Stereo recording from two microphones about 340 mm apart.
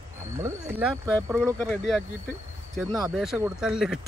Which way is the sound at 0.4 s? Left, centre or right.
Centre.